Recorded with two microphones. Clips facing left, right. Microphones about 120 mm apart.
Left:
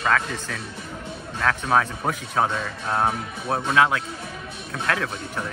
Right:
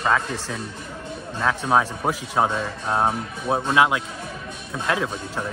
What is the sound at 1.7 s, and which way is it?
Speech, 15° right (ahead or behind).